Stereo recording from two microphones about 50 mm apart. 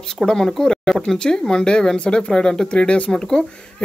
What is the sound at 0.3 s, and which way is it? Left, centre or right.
Speech, centre.